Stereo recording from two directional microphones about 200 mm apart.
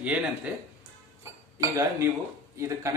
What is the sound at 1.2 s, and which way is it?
Chink, 15° right (ahead or behind).